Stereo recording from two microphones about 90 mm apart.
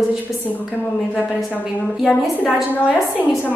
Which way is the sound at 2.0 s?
15° left (ahead or behind).